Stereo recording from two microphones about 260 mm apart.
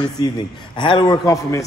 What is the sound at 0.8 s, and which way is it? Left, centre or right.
Speech, centre.